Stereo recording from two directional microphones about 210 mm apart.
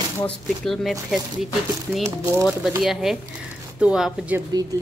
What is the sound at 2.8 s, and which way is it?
A woman's voice, centre (ahead or behind).